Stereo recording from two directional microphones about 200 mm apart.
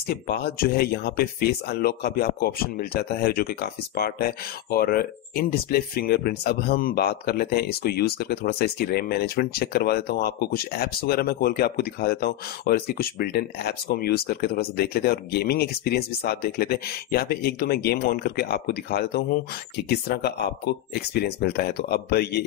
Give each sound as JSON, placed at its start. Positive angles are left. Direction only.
{"t": 0.1, "sound": "speech", "side_deg": 50}